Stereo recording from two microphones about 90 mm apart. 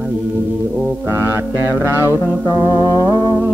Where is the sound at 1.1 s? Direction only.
30° right (ahead or behind).